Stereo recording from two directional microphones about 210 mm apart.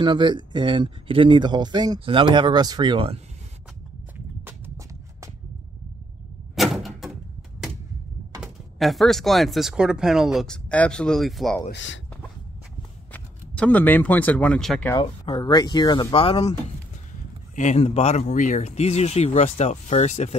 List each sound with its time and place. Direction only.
0.0 s speech: 20° right (ahead or behind)
4.5 s a sound: 15° right (ahead or behind)
6.5 s door: centre (ahead or behind)
8.4 s speech: centre (ahead or behind)
11.7 s speech: 65° left (ahead or behind)
13.1 s speech: 10° left (ahead or behind)
15.0 s speech: 20° left (ahead or behind)
17.6 s speech: 30° left (ahead or behind)